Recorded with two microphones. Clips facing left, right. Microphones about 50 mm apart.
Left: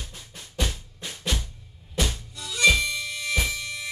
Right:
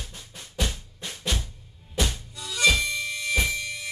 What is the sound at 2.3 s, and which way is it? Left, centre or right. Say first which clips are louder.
Harmonica: left 3 dB; centre.